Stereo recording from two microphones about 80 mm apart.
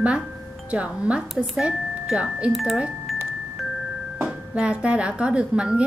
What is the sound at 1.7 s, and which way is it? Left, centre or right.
Speech, centre.